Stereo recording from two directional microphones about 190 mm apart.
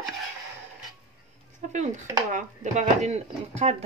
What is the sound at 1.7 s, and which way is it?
Speech, 40° right (ahead or behind).